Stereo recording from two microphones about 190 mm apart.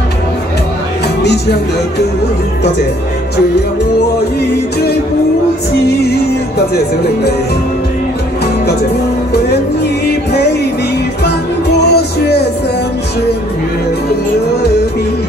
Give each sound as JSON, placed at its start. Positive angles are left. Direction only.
{"t": 1.2, "sound": "music", "side_deg": 60}
{"t": 10.0, "sound": "music", "side_deg": 60}
{"t": 11.8, "sound": "music", "side_deg": 60}